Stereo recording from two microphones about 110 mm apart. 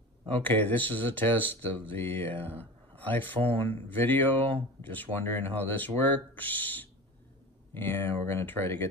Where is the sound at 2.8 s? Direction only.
15° left (ahead or behind).